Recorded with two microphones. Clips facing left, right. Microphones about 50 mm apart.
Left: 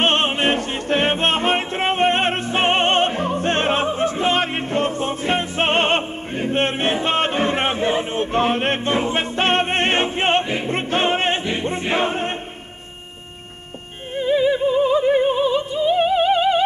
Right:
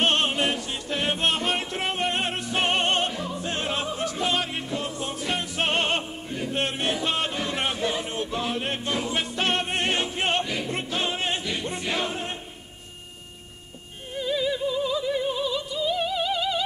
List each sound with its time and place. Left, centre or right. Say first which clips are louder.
0.0 s music: left 5 dB; left
14.1 s opera: left 9 dB; left